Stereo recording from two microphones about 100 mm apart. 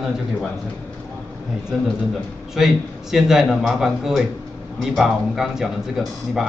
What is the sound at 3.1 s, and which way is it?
A man's voice, 5° right (ahead or behind).